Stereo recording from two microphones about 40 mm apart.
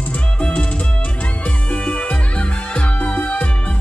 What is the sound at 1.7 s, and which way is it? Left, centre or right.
Music, left.